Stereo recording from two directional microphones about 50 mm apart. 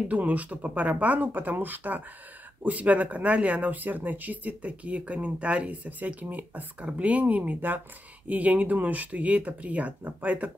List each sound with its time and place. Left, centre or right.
0.1 s speech: right